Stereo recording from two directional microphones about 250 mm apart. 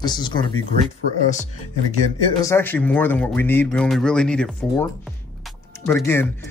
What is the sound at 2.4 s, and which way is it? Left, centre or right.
Speech, centre.